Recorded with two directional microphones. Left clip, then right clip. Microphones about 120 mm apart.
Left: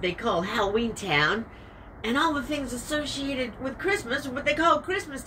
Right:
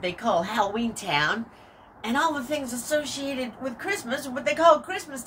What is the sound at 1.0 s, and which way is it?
A woman's voice, 25° right (ahead or behind).